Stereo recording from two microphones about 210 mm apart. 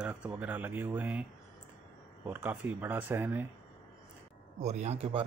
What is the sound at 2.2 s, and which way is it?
Speech, 5° right (ahead or behind).